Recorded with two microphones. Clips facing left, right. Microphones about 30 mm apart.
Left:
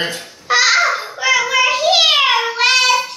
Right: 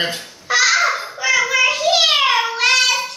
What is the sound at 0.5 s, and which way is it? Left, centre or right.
Babbling, left.